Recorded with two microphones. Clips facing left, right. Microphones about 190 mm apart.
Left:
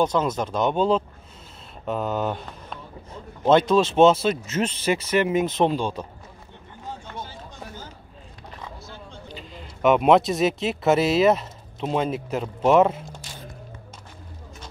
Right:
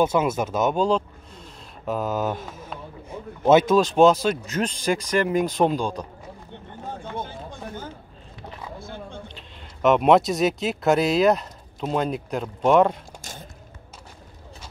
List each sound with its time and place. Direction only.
0.0 s a man's voice: 10° right (ahead or behind)
6.9 s run: 55° right (ahead or behind)
8.7 s a sound: 55° right (ahead or behind)
9.3 s speech: centre (ahead or behind)